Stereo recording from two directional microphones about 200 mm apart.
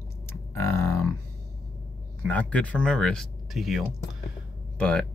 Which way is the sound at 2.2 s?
5° left (ahead or behind).